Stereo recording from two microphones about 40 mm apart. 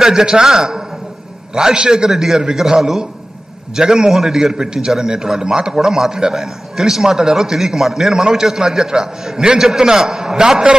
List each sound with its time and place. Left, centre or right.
0.0 s a man's voice: centre